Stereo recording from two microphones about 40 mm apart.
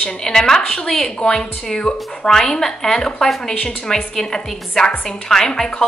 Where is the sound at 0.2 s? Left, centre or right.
Centre.